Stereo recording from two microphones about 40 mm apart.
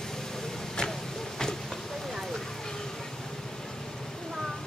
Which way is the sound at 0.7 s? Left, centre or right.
Centre.